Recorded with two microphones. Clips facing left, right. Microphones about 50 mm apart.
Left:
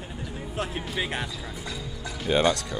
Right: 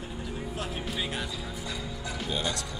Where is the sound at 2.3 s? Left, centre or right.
Left.